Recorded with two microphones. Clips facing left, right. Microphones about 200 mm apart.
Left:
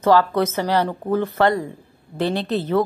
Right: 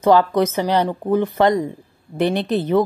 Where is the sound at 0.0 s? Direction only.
15° right (ahead or behind).